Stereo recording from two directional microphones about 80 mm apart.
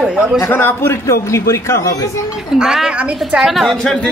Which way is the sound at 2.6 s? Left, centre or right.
Centre.